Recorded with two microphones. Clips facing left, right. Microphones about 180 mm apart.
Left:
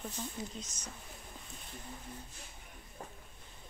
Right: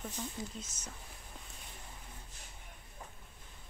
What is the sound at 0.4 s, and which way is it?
Speech, 20° left (ahead or behind).